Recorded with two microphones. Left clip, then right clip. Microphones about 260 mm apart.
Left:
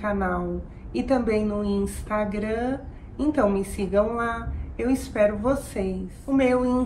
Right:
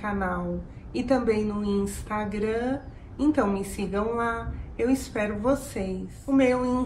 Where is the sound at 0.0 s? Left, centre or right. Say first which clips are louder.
Left 3 dB; centre.